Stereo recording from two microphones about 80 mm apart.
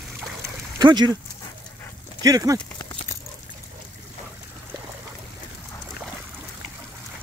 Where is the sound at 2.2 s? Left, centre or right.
Right.